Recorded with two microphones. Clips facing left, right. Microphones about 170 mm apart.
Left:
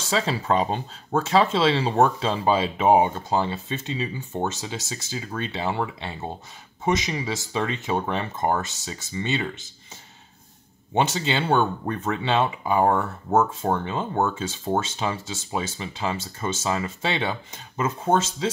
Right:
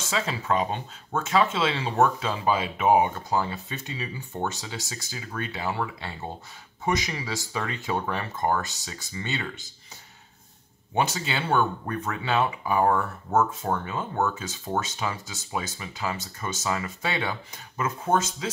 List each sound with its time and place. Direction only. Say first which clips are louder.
0.1 s speech: left 4 dB; 30° left (ahead or behind)
11.0 s speech: left 4 dB; 25° left (ahead or behind)